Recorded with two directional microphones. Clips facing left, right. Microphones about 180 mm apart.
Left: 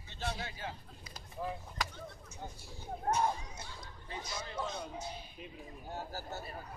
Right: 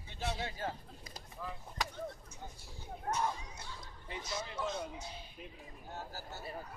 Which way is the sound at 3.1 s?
35° left (ahead or behind).